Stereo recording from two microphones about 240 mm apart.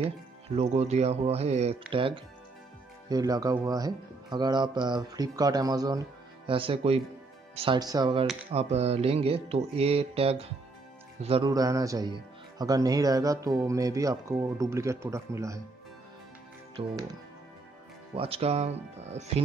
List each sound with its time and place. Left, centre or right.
0.6 s music: right
3.1 s speech: centre
7.5 s music: right
11.1 s speech: right
16.7 s speech: centre
18.1 s music: right